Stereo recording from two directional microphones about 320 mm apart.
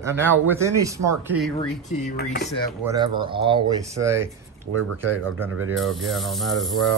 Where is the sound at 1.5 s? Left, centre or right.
Left.